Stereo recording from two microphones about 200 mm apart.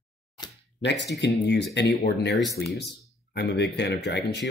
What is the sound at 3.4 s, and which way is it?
Speech, 55° left (ahead or behind).